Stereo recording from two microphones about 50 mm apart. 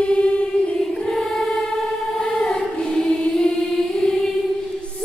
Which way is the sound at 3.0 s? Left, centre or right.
Centre.